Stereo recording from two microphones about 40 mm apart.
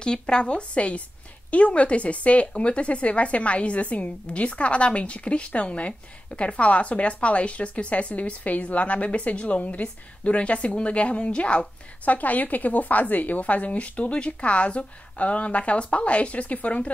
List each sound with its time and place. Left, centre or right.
0.0 s speech: left
12.0 s speech: left